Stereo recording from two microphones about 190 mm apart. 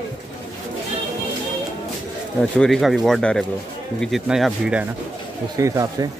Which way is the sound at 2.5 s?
Centre (ahead or behind).